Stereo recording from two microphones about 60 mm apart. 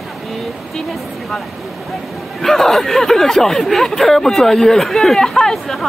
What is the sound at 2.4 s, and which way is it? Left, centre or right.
Speech, centre.